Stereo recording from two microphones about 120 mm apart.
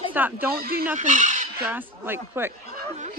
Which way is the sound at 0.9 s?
90° right.